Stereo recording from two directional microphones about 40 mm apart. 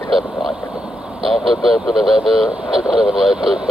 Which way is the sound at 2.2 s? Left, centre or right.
Centre.